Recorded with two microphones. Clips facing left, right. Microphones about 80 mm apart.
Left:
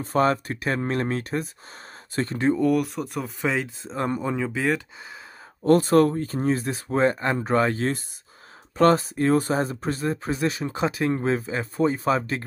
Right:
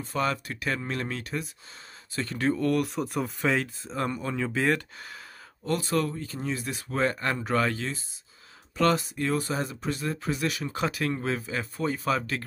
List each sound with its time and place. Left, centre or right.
0.0 s speech: left
2.3 s speech: left
2.6 s speech: centre
3.8 s speech: left
4.2 s speech: centre
4.5 s speech: centre
5.7 s speech: left